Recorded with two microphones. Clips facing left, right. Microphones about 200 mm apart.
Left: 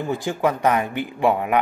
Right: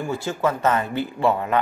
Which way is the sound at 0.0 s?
15° left (ahead or behind).